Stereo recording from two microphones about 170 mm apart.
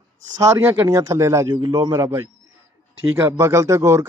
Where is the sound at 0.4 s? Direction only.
15° right (ahead or behind).